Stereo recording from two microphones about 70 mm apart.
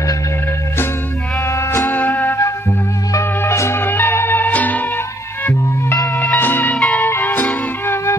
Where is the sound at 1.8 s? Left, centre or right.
Left.